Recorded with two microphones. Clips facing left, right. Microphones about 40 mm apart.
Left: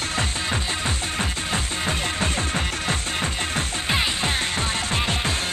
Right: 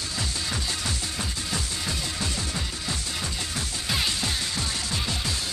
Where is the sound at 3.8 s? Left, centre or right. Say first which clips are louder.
Left 4 dB; left.